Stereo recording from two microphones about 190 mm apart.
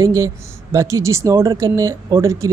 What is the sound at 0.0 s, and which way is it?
Speech, 15° right (ahead or behind).